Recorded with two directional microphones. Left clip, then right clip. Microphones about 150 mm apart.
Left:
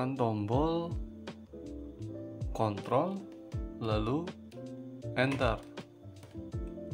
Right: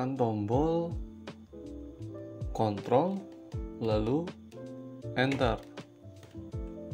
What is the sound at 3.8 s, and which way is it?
Music, 5° right (ahead or behind).